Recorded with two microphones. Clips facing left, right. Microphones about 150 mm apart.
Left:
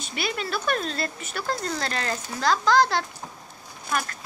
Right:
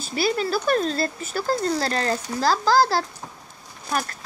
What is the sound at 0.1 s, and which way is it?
Speech, 35° right (ahead or behind).